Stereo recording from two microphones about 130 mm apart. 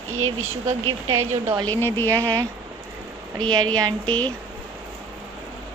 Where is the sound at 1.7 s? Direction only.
20° left (ahead or behind).